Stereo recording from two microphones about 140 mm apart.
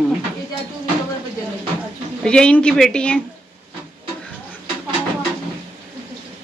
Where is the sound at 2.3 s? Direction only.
5° left (ahead or behind).